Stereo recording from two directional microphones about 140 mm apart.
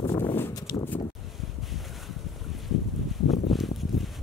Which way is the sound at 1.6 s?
Centre (ahead or behind).